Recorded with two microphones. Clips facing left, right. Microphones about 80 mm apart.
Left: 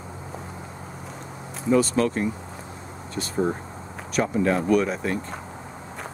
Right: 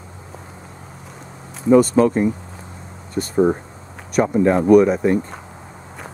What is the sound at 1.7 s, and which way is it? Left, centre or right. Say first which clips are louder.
Speech: right 8 dB; centre.